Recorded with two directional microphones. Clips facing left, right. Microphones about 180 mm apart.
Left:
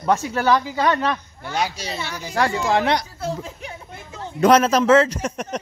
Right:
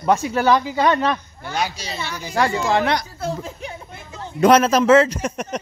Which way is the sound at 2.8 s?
25° left (ahead or behind).